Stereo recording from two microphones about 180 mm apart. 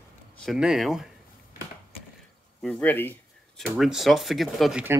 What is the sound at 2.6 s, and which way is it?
Speech, 5° left (ahead or behind).